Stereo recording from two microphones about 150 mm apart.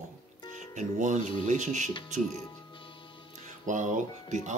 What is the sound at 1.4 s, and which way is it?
Speech, 55° right (ahead or behind).